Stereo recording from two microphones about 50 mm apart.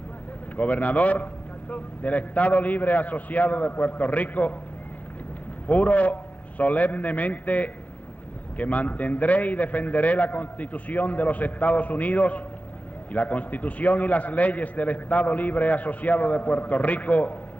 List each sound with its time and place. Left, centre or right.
0.6 s a man's voice: left
5.7 s a man's voice: left